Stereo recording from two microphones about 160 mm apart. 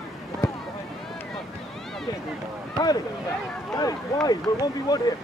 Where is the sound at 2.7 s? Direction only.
25° left (ahead or behind).